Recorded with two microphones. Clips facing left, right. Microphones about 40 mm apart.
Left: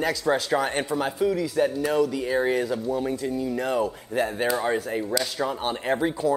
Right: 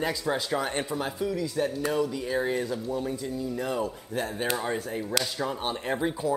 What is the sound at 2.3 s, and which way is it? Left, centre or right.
Speech, left.